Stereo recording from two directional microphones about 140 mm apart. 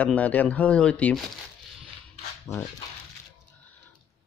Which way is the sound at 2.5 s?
20° left (ahead or behind).